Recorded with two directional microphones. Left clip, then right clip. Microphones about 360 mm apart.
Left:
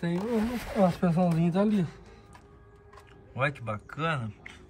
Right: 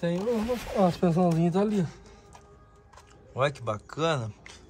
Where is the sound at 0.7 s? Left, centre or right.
Right.